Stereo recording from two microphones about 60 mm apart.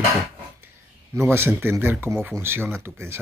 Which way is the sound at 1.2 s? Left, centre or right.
Right.